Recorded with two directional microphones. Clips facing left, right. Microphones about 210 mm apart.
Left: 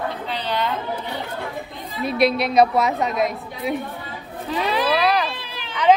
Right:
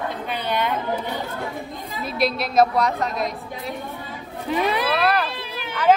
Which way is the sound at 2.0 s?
Centre (ahead or behind).